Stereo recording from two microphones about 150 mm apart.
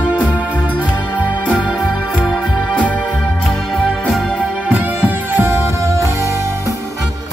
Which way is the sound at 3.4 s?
Centre (ahead or behind).